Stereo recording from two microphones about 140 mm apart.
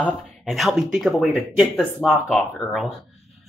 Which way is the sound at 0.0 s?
Centre (ahead or behind).